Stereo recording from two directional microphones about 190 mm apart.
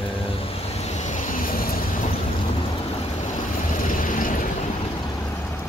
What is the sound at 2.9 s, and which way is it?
Vehicle, 45° left (ahead or behind).